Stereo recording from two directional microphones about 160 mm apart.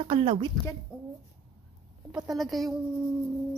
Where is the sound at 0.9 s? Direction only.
5° right (ahead or behind).